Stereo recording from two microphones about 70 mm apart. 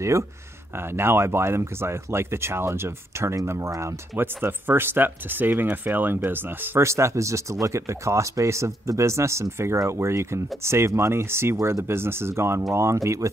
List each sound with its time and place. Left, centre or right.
0.7 s speech: right
4.2 s speech: right
6.8 s speech: right